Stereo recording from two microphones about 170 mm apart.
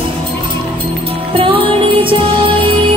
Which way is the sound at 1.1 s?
30° right (ahead or behind).